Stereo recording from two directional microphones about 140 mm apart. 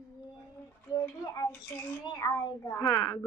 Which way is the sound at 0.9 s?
25° left (ahead or behind).